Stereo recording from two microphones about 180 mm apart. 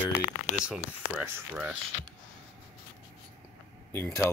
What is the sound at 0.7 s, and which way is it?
Speech, 10° right (ahead or behind).